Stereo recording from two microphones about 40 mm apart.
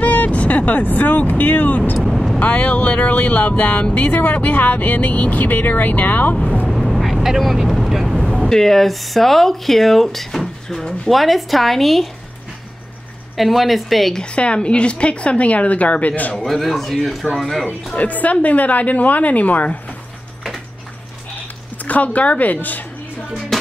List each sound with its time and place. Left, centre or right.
0.0 s vehicle: left
1.4 s speech: left
2.0 s vehicle: centre
2.3 s a woman's voice: left
6.7 s vehicle: centre
7.2 s speech: centre
8.5 s speech: centre
11.1 s speech: centre
13.4 s speech: centre
14.1 s a woman's voice: left
16.3 s speech: centre
17.9 s a woman's voice: left
21.8 s a woman's voice: left
23.5 s music: centre